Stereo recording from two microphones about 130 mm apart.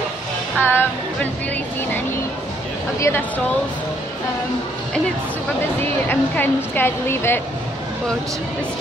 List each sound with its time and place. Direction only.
0.6 s speech: 15° left (ahead or behind)
3.0 s a woman's voice: 15° left (ahead or behind)
6.0 s a woman's voice: 15° left (ahead or behind)